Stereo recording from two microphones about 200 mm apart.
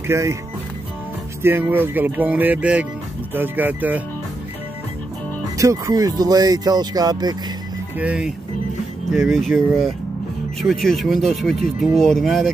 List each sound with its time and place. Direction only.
0.0 s speech: 15° right (ahead or behind)
1.4 s speech: 10° right (ahead or behind)
5.6 s speech: 15° right (ahead or behind)
8.0 s speech: 5° right (ahead or behind)